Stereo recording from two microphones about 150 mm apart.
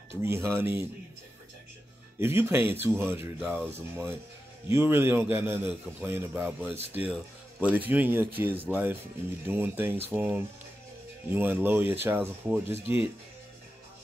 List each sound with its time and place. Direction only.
0.2 s a man's voice: 15° right (ahead or behind)
2.1 s a man's voice: 15° right (ahead or behind)